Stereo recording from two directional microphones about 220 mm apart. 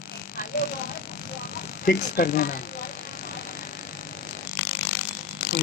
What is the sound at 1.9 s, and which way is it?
Speech, 45° left (ahead or behind).